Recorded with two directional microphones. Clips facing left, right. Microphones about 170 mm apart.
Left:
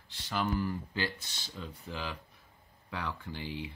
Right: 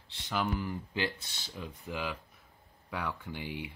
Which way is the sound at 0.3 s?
15° right (ahead or behind).